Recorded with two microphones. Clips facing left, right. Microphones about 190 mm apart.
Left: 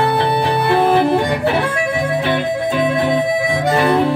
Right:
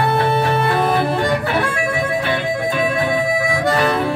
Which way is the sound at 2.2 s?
20° left (ahead or behind).